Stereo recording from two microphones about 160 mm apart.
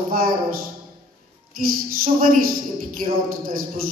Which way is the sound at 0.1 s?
60° right (ahead or behind).